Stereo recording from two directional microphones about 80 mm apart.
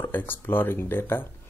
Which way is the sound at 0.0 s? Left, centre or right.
Left.